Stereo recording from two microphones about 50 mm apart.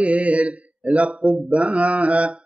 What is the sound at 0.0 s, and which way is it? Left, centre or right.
Speech, right.